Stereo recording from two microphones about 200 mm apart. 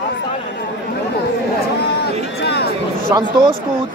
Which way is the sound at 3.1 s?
20° right (ahead or behind).